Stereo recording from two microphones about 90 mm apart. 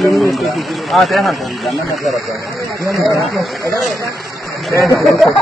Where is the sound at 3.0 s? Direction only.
Centre (ahead or behind).